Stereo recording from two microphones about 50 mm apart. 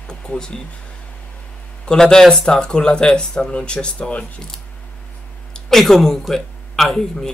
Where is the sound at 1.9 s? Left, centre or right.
Centre.